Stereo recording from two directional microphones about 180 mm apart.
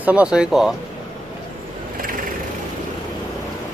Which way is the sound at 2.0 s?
50° right (ahead or behind).